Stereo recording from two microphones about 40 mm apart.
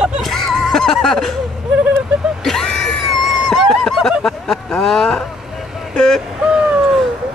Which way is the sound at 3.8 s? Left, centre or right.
Centre.